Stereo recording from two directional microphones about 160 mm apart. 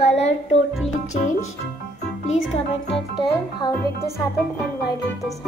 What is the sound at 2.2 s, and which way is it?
Speech, 45° left (ahead or behind).